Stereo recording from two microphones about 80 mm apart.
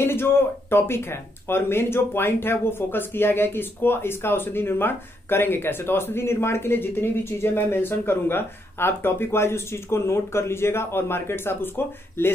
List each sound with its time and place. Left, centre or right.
0.0 s speech: left